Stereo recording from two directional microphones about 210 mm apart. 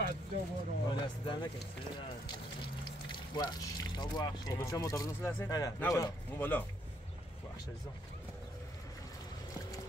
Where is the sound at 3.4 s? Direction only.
20° left (ahead or behind).